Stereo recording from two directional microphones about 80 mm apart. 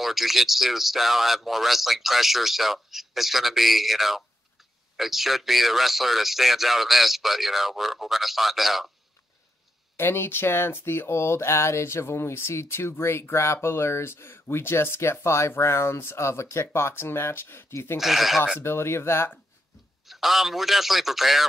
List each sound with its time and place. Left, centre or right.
0.0 s speech: centre
9.9 s speech: left
18.0 s speech: centre
18.6 s speech: left
20.1 s speech: centre